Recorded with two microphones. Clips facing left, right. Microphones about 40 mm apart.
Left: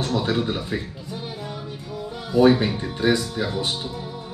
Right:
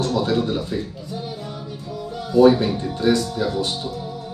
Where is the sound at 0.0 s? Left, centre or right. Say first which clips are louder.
Right 3 dB; centre.